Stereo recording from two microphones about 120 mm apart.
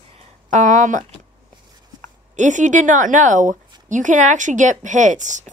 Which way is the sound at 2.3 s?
90° right.